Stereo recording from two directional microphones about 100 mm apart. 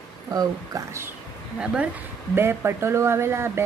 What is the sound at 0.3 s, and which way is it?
Speech, 35° right (ahead or behind).